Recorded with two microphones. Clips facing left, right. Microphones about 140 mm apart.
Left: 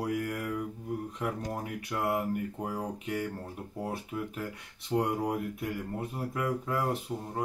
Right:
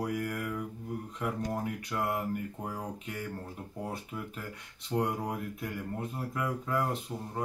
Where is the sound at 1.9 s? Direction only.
5° left (ahead or behind).